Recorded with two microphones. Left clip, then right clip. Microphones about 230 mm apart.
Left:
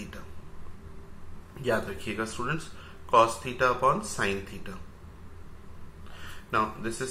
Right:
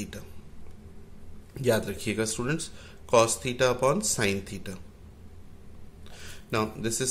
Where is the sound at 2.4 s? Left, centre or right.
Right.